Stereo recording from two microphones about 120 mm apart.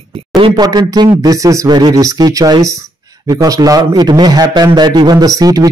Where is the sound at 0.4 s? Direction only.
35° right (ahead or behind).